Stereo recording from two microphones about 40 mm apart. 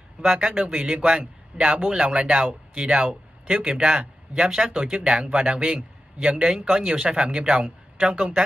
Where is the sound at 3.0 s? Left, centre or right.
Right.